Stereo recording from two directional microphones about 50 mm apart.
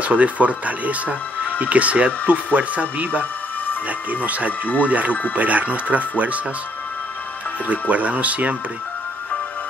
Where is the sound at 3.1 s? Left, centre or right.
Left.